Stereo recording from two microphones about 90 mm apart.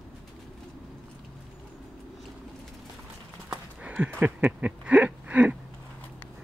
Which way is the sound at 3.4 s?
15° right (ahead or behind).